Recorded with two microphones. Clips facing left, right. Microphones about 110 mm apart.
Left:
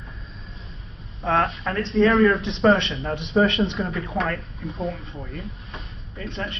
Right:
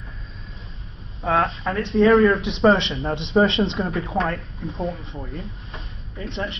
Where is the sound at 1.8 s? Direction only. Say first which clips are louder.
Right 1 dB; 15° right (ahead or behind).